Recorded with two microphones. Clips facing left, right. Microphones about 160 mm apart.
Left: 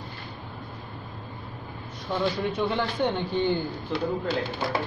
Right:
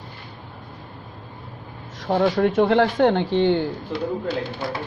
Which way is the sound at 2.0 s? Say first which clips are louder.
Right 8 dB; 90° right.